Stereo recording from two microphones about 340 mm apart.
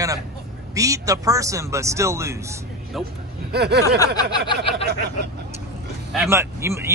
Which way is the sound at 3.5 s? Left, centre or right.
Right.